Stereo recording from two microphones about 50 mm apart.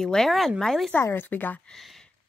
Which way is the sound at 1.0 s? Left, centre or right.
Left.